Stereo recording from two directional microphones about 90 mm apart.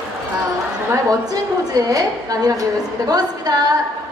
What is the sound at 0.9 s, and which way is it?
A woman's voice, 40° right (ahead or behind).